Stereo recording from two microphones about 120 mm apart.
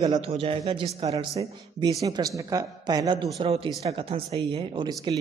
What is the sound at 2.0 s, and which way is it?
A woman's voice, 30° right (ahead or behind).